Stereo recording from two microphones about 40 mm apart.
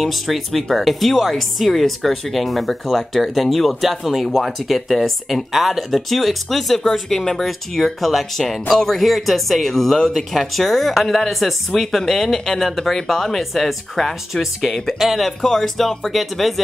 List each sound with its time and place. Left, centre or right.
0.0 s speech: centre